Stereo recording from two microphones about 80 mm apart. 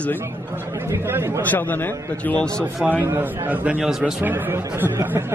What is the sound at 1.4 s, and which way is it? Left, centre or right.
Speech, left.